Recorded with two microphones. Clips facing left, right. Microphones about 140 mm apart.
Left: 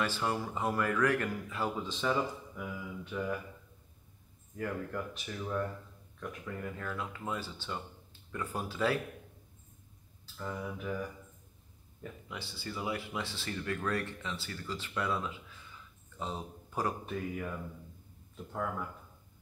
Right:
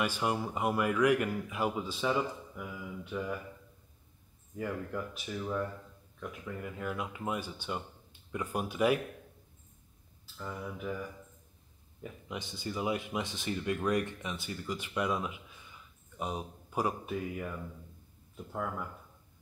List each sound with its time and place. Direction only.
0.0 s speech: 15° right (ahead or behind)
4.6 s speech: 5° right (ahead or behind)
10.3 s speech: centre (ahead or behind)
12.3 s speech: 20° right (ahead or behind)